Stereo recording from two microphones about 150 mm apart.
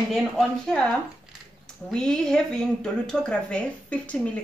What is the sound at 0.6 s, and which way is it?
Speech, 5° left (ahead or behind).